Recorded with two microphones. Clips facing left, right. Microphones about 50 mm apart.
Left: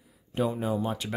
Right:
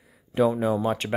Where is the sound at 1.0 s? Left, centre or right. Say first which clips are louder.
Right 7 dB; right.